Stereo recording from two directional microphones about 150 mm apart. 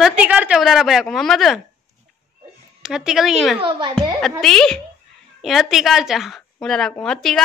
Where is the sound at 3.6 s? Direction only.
35° right (ahead or behind).